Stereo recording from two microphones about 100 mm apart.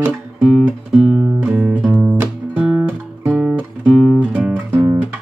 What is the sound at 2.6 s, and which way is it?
Guitar, 10° right (ahead or behind).